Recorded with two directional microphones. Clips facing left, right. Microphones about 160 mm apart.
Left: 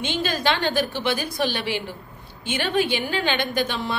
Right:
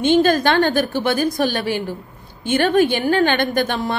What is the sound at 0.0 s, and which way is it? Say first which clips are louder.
A woman's voice: right 10 dB; 50° right (ahead or behind).